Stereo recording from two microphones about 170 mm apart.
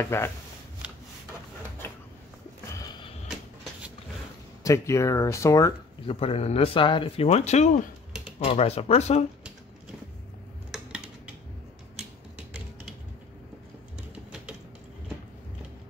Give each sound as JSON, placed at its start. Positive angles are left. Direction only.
{"t": 0.0, "sound": "speech", "side_deg": 15}
{"t": 2.7, "sound": "skateboard", "side_deg": 20}
{"t": 4.6, "sound": "speech", "side_deg": 20}
{"t": 6.0, "sound": "speech", "side_deg": 35}